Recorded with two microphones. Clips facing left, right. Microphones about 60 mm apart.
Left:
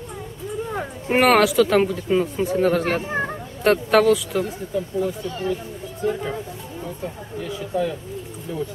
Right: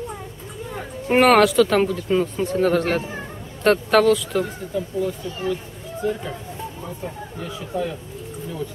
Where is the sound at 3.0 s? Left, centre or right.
Left.